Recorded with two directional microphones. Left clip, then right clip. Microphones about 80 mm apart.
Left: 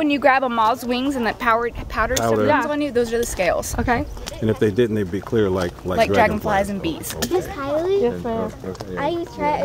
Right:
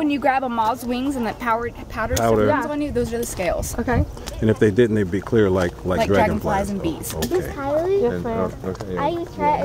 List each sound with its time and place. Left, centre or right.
0.0 s speech: left
2.1 s a woman's voice: left
4.4 s speech: centre
5.9 s a woman's voice: left
7.6 s a sound: left
8.9 s speech: left